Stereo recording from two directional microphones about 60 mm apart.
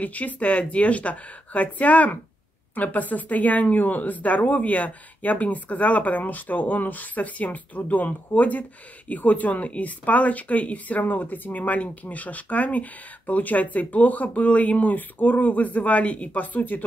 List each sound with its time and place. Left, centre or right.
0.0 s speech: left